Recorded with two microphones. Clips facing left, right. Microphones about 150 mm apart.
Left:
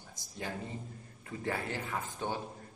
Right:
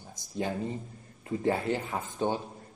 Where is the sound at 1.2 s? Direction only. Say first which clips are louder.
Right 8 dB; 25° right (ahead or behind).